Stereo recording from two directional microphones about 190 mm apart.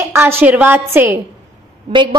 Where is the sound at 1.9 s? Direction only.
25° right (ahead or behind).